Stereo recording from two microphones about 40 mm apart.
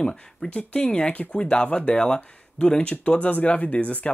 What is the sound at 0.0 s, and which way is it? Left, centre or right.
Speech, centre.